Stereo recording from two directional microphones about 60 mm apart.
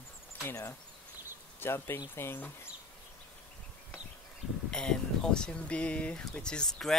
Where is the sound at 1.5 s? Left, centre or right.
Left.